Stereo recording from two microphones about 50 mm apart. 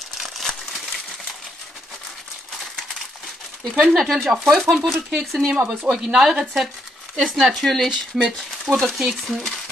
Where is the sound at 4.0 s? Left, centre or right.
Centre.